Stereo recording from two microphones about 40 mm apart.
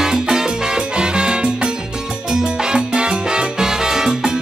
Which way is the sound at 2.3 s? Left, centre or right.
Centre.